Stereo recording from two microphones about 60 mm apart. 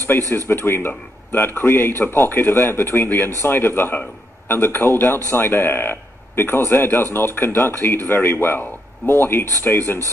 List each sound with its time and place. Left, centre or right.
0.3 s speech: left